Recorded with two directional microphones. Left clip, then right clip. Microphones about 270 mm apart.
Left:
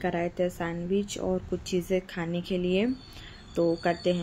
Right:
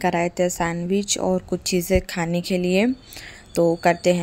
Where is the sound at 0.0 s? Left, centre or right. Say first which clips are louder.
Right 8 dB; right.